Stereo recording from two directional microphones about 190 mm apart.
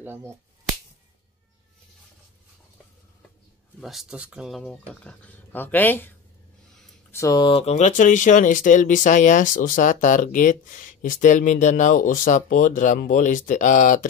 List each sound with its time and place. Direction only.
0.0 s speech: 10° right (ahead or behind)
3.8 s speech: centre (ahead or behind); by 14.0 s 40° left (ahead or behind)